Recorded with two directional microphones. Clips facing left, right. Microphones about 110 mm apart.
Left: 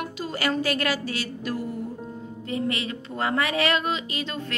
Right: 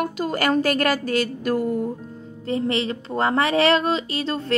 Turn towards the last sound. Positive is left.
turn(degrees=-35)  # may be behind; listen again after turning